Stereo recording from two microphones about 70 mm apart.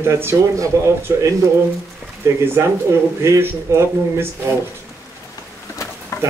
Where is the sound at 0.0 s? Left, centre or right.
Right.